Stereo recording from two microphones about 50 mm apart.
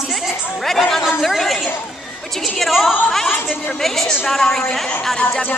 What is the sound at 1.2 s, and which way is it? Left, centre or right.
Chatter, centre.